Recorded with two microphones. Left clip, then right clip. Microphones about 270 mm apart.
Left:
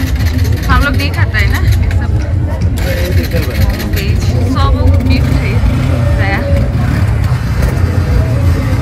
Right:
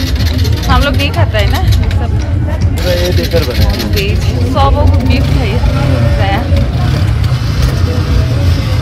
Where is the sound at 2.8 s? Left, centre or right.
Left.